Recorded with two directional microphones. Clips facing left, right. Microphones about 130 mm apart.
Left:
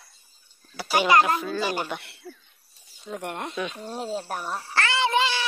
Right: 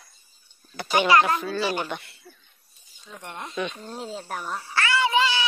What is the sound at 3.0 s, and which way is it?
Speech, 55° left (ahead or behind).